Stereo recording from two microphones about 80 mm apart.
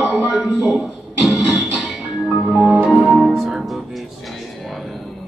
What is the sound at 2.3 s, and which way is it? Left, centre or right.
Music, centre.